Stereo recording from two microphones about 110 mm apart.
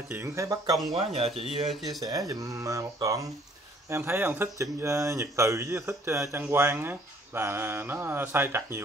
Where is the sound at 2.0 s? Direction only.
35° right (ahead or behind).